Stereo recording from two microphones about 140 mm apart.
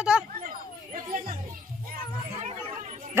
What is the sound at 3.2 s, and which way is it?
Speech, 15° right (ahead or behind).